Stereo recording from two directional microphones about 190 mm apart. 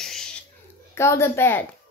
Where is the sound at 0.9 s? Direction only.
15° left (ahead or behind).